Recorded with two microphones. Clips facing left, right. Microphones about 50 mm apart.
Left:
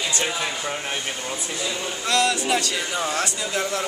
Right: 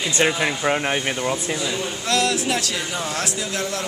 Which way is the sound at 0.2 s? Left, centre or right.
Right.